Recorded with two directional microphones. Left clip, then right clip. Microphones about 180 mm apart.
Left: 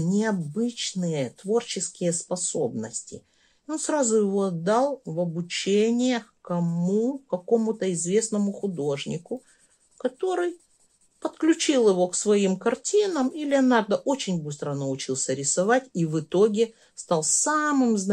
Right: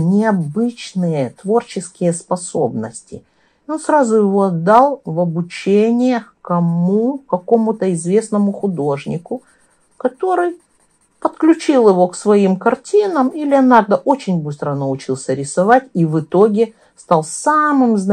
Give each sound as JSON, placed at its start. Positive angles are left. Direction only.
{"t": 0.1, "sound": "speech", "side_deg": 30}
{"t": 8.5, "sound": "speech", "side_deg": 10}
{"t": 8.8, "sound": "speech", "side_deg": 30}